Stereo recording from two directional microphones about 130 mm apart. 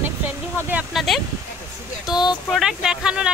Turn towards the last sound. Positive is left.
turn(degrees=-5)  # may be behind; listen again after turning